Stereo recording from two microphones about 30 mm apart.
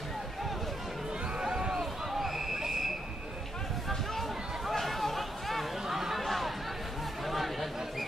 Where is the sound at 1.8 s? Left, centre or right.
Centre.